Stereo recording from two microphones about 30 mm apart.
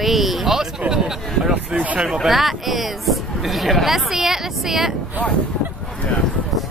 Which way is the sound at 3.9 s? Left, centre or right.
Centre.